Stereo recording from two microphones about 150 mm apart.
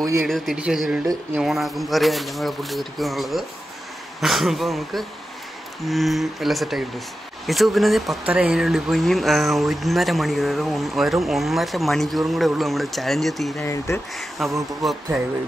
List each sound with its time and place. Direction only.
0.0 s speech: 20° right (ahead or behind)
0.3 s speech: 5° right (ahead or behind)
13.6 s speech: 20° left (ahead or behind)
14.4 s speech: centre (ahead or behind)